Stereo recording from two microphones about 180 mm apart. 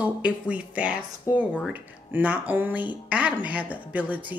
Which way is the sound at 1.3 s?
15° left (ahead or behind).